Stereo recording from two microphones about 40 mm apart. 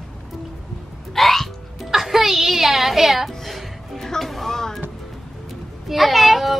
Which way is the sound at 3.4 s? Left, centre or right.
Centre.